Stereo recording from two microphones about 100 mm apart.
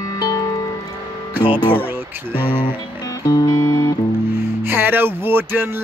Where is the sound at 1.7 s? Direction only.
20° right (ahead or behind).